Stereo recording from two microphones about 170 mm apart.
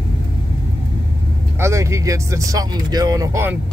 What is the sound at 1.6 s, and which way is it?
Speech, 15° right (ahead or behind).